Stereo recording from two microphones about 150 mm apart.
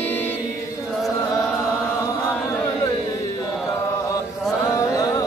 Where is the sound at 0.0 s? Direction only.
15° left (ahead or behind).